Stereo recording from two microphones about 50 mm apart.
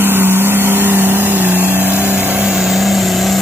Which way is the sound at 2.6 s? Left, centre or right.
Centre.